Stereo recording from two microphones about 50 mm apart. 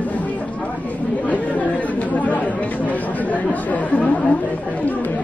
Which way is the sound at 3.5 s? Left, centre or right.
Left.